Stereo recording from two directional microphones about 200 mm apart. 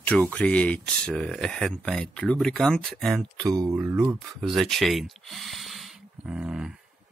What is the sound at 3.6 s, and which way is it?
Speech, 15° right (ahead or behind).